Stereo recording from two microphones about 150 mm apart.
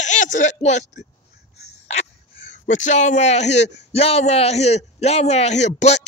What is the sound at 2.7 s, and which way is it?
A man's voice, 55° left (ahead or behind).